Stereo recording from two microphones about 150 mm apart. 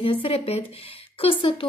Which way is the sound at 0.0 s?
40° left (ahead or behind).